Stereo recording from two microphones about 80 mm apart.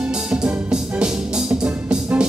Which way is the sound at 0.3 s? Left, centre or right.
Centre.